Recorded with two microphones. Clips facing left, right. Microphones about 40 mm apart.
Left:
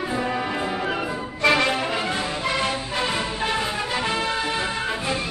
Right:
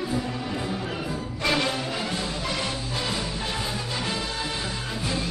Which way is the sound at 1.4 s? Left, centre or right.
Left.